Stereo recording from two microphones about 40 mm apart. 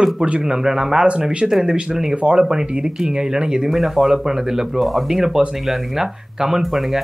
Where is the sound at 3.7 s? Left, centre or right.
Centre.